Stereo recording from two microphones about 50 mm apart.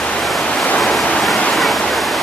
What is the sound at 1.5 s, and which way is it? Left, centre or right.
Waterfall, centre.